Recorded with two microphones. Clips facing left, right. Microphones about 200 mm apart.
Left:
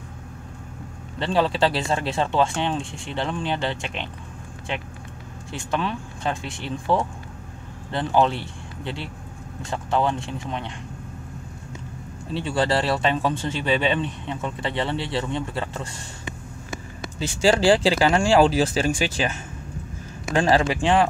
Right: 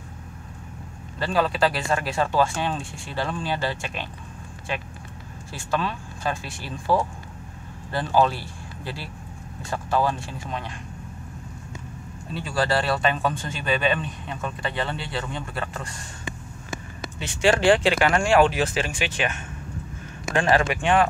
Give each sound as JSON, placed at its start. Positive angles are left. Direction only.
{"t": 1.2, "sound": "speech", "side_deg": 25}
{"t": 12.3, "sound": "speech", "side_deg": 25}
{"t": 17.4, "sound": "speech", "side_deg": 30}
{"t": 20.3, "sound": "speech", "side_deg": 30}